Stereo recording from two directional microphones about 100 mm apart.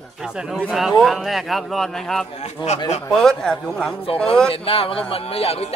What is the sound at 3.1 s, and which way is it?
Speech, 5° left (ahead or behind).